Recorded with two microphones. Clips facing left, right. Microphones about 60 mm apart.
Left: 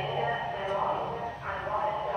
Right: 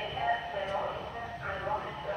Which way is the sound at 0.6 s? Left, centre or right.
Centre.